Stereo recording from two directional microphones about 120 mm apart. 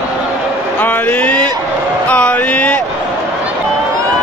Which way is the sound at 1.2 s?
10° left (ahead or behind).